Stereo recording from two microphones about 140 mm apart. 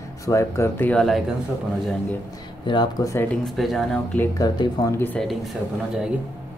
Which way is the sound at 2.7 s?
35° left (ahead or behind).